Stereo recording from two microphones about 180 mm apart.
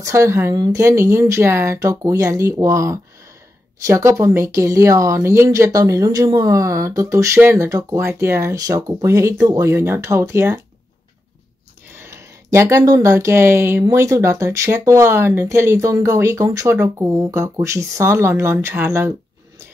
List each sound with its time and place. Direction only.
0.0 s speech: 15° right (ahead or behind)
12.0 s speech: 15° right (ahead or behind)